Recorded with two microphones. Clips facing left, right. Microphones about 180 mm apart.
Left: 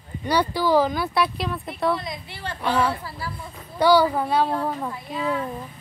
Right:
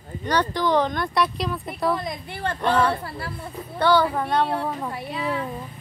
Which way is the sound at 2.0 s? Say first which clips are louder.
Right 4 dB; 50° right (ahead or behind).